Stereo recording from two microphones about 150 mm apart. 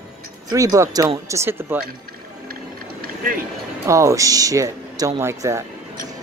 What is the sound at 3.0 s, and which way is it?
Vehicle, 70° right (ahead or behind).